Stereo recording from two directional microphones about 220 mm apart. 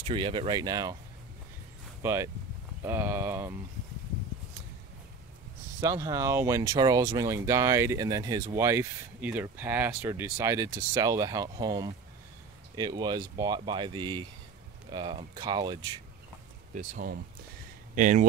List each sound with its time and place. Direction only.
0.0 s speech: 20° right (ahead or behind)
2.0 s speech: 10° right (ahead or behind)
5.8 s speech: 15° right (ahead or behind)
16.7 s speech: 40° right (ahead or behind)